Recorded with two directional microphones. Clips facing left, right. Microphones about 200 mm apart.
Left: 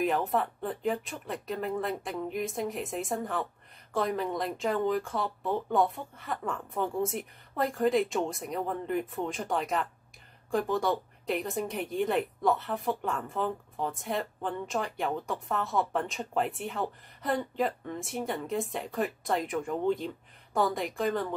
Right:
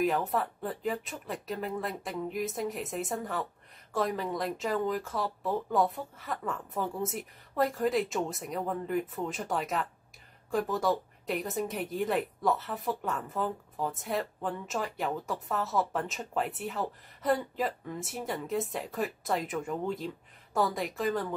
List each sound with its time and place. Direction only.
0.0 s a woman's voice: centre (ahead or behind)